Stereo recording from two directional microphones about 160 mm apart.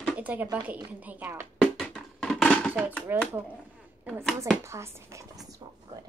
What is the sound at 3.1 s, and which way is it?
Speech, 15° right (ahead or behind).